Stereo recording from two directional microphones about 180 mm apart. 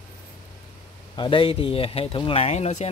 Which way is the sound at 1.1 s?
25° left (ahead or behind).